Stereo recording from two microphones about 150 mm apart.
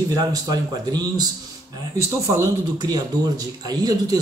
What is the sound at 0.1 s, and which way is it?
A man's voice, 25° right (ahead or behind).